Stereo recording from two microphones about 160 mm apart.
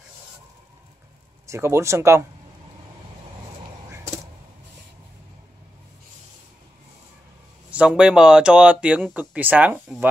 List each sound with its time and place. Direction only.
1.5 s speech: 15° right (ahead or behind)
7.7 s speech: 5° right (ahead or behind)